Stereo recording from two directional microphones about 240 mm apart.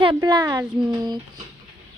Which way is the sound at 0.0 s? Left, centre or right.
Centre.